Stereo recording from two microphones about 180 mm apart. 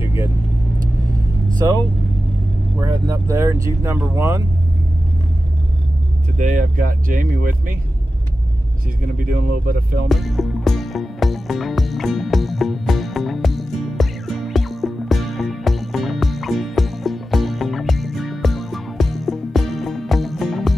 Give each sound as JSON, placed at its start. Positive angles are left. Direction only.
{"t": 2.8, "sound": "speech", "side_deg": -20}
{"t": 6.3, "sound": "speech", "side_deg": -45}
{"t": 9.2, "sound": "speech", "side_deg": -50}
{"t": 10.0, "sound": "music", "side_deg": 0}